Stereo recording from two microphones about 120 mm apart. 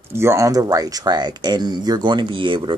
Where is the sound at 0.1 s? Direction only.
20° right (ahead or behind).